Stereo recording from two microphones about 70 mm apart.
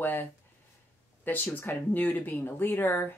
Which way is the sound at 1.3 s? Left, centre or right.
Left.